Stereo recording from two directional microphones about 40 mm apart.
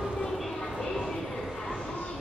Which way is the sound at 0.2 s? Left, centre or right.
Centre.